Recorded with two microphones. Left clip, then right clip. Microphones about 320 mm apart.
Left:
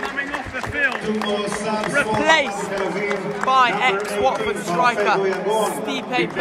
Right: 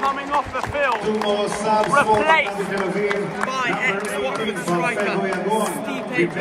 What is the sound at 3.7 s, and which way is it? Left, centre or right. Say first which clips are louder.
A man's voice: left 2 dB; centre.